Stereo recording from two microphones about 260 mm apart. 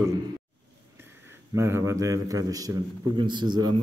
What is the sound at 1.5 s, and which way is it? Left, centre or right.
A man's voice, centre.